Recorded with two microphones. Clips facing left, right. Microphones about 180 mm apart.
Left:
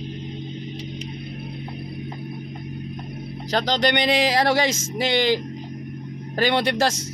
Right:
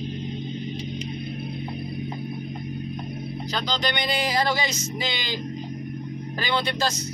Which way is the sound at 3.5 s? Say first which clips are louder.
Left 7 dB; 85° left.